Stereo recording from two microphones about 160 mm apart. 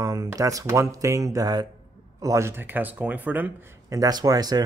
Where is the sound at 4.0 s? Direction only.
25° right (ahead or behind).